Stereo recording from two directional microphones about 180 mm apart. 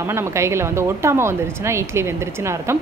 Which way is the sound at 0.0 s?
15° right (ahead or behind).